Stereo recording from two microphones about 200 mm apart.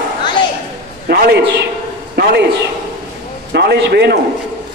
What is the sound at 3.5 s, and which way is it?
Speech, 55° right (ahead or behind).